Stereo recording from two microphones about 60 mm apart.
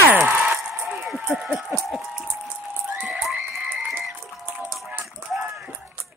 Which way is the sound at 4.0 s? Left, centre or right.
Centre.